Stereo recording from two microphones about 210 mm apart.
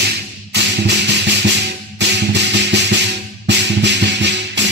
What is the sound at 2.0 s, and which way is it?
Music, 55° right (ahead or behind).